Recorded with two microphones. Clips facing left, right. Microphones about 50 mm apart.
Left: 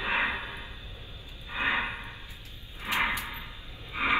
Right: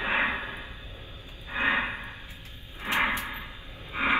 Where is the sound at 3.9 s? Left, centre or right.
Right.